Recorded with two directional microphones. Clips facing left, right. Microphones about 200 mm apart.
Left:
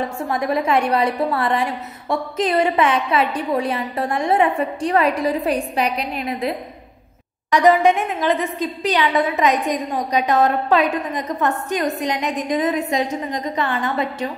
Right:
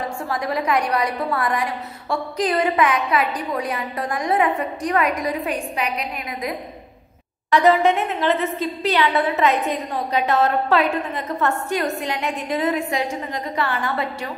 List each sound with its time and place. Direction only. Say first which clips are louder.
0.3 s a woman's voice: left 3 dB; 25° left (ahead or behind)
7.5 s a woman's voice: left 2 dB; 15° left (ahead or behind)